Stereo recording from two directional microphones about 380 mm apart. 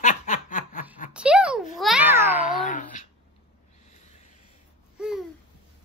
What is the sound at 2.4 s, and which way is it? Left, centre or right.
Cat, centre.